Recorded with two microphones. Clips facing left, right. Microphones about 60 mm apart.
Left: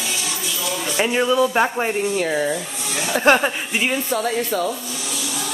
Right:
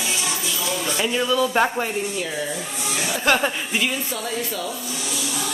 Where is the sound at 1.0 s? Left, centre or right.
Left.